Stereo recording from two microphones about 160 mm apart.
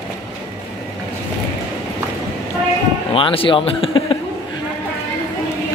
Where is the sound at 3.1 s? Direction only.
35° left (ahead or behind).